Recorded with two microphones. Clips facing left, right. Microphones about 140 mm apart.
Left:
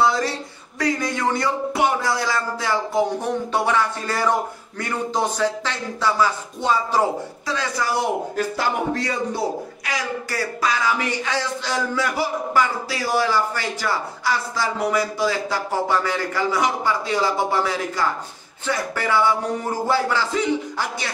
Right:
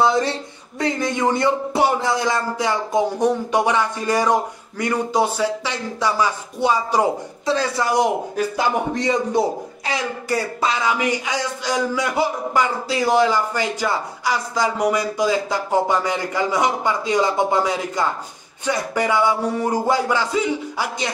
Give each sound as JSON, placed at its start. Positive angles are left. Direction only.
{"t": 0.0, "sound": "a man's voice", "side_deg": -25}
{"t": 7.4, "sound": "a man's voice", "side_deg": -25}